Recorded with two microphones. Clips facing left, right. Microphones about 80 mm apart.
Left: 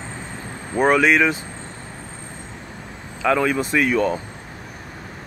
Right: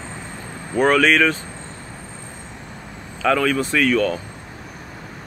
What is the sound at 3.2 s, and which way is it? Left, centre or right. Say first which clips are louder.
Speech: right 1 dB; centre.